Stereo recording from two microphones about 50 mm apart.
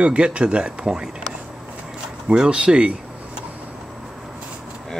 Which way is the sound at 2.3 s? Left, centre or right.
Centre.